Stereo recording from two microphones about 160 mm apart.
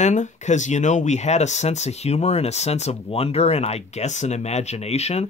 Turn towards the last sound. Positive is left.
turn(degrees=40)  # may be behind; listen again after turning